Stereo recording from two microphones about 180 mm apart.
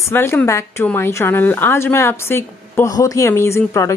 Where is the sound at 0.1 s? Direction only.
10° left (ahead or behind).